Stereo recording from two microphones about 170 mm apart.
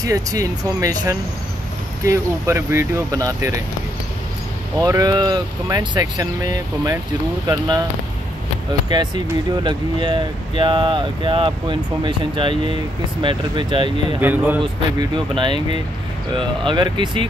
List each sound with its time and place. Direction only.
0.0 s speech: 20° right (ahead or behind)
4.8 s speech: 20° right (ahead or behind)
8.8 s speech: 25° right (ahead or behind)
14.2 s speech: 10° right (ahead or behind)
14.6 s speech: 30° right (ahead or behind)